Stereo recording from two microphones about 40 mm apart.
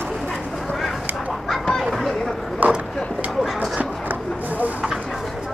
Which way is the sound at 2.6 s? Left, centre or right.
Right.